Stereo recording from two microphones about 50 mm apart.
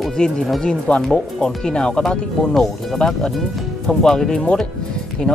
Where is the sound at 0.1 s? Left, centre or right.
Centre.